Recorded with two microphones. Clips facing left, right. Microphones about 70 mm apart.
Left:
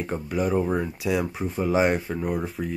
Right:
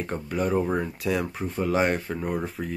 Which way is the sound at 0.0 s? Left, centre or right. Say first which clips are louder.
Left 1 dB; centre.